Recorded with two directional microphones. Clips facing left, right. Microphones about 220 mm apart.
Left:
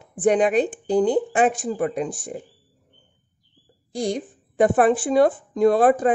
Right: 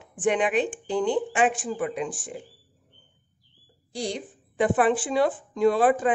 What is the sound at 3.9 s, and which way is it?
Speech, 50° left (ahead or behind).